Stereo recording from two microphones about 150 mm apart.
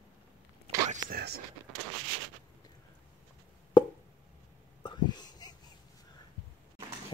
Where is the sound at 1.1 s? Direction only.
90° right.